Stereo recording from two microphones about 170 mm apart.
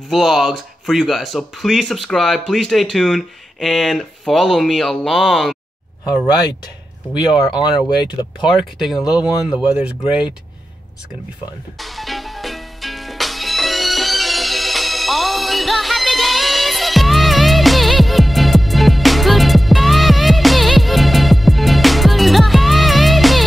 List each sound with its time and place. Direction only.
0.1 s speech: centre (ahead or behind)
7.2 s speech: 25° left (ahead or behind)
8.5 s speech: centre (ahead or behind)
11.8 s music: centre (ahead or behind)